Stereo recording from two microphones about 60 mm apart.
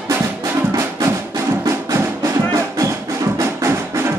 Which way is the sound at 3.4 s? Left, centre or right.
Right.